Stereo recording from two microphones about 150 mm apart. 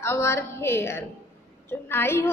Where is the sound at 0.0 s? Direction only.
15° left (ahead or behind).